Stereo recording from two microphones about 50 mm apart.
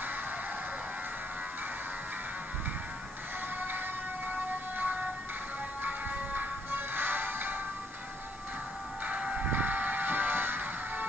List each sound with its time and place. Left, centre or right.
4.3 s vehicle: right
5.8 s music: right
9.0 s a sound: right
9.5 s music: right